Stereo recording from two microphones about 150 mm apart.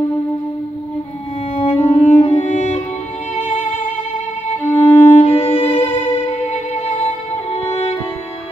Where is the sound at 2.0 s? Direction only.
10° left (ahead or behind).